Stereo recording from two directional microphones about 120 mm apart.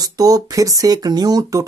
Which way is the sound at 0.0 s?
30° right (ahead or behind).